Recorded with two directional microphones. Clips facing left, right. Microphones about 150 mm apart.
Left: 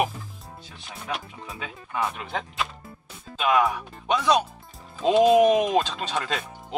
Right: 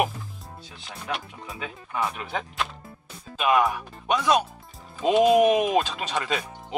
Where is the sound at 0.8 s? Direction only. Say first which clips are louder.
Right 1 dB; centre (ahead or behind).